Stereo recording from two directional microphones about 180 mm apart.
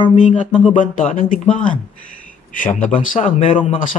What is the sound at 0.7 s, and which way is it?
Speech, 45° left (ahead or behind).